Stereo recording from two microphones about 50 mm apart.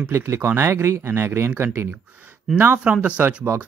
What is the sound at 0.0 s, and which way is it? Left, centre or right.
Speech, right.